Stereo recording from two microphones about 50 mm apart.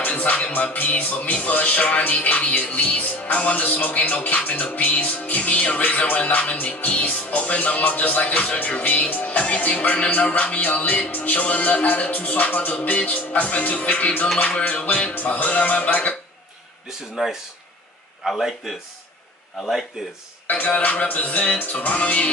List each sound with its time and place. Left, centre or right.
0.1 s music: left
17.1 s speech: centre
20.4 s music: left